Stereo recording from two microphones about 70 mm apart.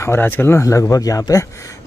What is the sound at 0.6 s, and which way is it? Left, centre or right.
Speech, left.